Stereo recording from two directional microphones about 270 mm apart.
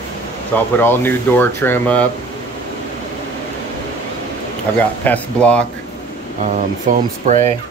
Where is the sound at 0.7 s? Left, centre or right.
Centre.